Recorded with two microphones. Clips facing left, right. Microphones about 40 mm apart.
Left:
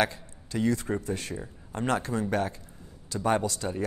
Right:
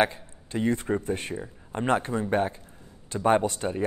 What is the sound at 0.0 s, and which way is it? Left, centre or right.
A man's voice, right.